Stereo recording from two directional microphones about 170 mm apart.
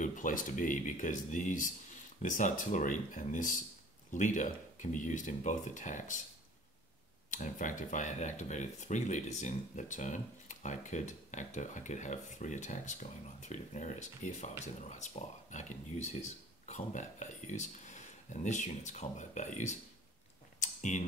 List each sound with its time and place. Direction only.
0.0 s speech: 50° left (ahead or behind)
7.2 s speech: 50° left (ahead or behind)
20.6 s a sound: 45° left (ahead or behind)